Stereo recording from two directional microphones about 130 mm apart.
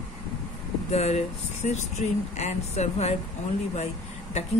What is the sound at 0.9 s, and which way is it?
Speech, 55° left (ahead or behind).